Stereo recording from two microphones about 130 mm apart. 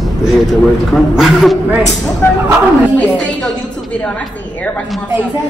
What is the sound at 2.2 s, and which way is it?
Speech, 20° left (ahead or behind).